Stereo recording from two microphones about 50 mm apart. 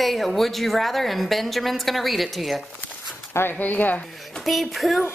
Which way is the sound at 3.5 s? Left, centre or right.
Left.